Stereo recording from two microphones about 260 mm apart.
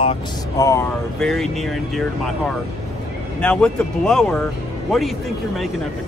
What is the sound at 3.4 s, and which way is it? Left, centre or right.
Speech, centre.